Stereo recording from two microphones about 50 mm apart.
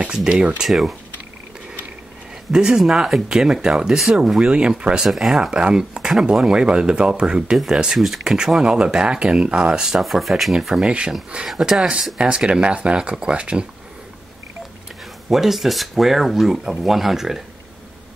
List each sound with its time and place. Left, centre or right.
0.1 s speech: centre
2.5 s speech: centre
7.5 s speech: centre
10.9 s speech: right
11.4 s speech: centre
12.2 s speech: right
15.2 s speech: centre